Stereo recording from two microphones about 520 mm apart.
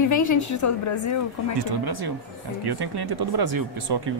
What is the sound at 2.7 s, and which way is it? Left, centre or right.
Speech, right.